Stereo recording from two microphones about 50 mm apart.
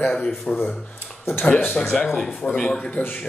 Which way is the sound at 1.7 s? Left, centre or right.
Centre.